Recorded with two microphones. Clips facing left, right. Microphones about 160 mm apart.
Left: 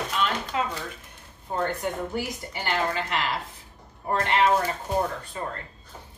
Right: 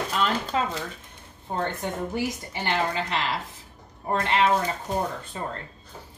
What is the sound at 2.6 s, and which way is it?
Speech, 25° right (ahead or behind).